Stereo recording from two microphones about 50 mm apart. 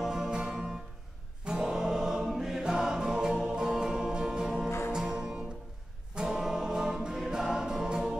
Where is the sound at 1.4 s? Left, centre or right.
Centre.